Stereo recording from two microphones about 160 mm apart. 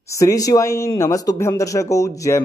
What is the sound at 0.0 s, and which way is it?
A man's voice, 20° left (ahead or behind).